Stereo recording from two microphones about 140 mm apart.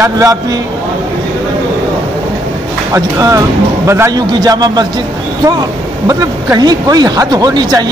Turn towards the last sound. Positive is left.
turn(degrees=-30)  # may be behind; listen again after turning